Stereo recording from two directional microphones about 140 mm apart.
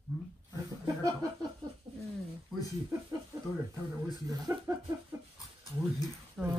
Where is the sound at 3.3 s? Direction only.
25° right (ahead or behind).